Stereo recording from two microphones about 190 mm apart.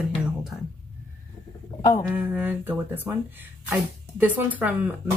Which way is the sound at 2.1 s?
10° right (ahead or behind).